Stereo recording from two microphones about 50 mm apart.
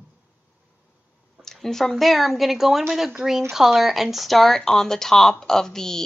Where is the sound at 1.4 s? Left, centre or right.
Centre.